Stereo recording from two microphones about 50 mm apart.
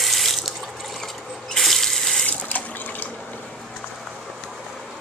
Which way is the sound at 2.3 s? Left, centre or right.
Left.